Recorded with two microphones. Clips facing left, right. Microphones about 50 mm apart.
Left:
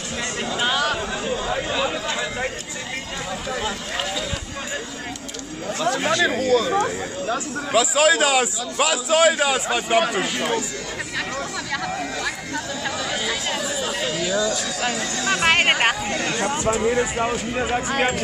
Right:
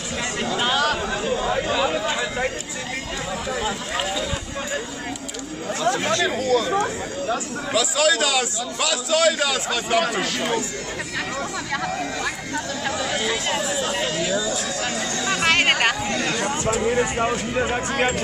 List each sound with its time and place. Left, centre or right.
0.4 s chatter: centre
2.1 s a sound: centre
5.9 s speech: centre
6.2 s speech: left
7.2 s a man's voice: left
12.8 s chatter: centre
14.8 s speech: centre
15.3 s a sound: centre
16.1 s a sound: centre
16.6 s speech: centre